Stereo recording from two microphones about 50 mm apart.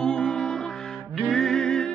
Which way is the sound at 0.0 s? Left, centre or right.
Centre.